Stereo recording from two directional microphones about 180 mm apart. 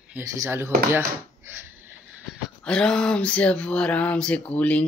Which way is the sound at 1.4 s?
10° right (ahead or behind).